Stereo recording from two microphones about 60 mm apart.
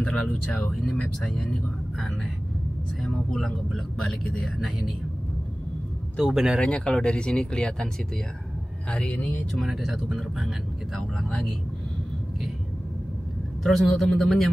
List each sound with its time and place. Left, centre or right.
0.0 s speech: centre
0.7 s speech: centre
3.0 s speech: centre
6.1 s speech: centre
6.6 s speech: centre
8.9 s speech: centre
9.5 s speech: centre
13.7 s speech: centre